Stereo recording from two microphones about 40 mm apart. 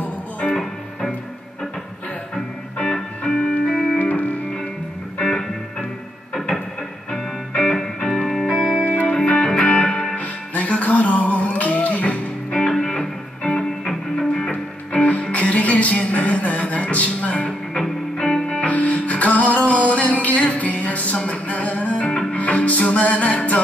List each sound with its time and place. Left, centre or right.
0.0 s music: left
2.8 s music: centre
3.7 s music: centre
4.0 s music: left
5.2 s music: centre
7.1 s music: centre
10.1 s music: left
12.4 s music: centre
14.9 s music: left
17.5 s music: centre
18.7 s music: left